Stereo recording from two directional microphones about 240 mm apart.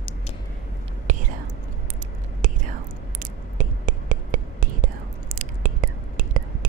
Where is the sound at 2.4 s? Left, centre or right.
Right.